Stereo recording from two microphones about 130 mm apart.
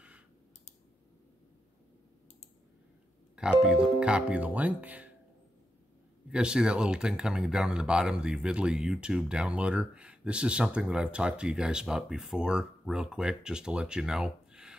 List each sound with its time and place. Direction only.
3.3 s speech: 5° right (ahead or behind)
6.3 s speech: 5° right (ahead or behind)